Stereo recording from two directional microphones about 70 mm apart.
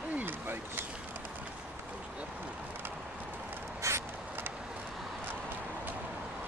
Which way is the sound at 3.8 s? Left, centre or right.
Right.